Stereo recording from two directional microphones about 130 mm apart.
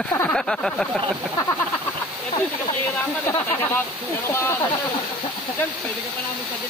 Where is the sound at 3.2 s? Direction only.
20° left (ahead or behind).